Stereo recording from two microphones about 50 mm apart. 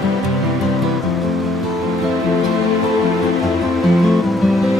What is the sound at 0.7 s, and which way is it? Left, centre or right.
Music, centre.